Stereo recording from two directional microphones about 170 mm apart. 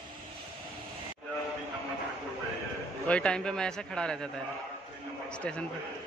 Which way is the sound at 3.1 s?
5° left (ahead or behind).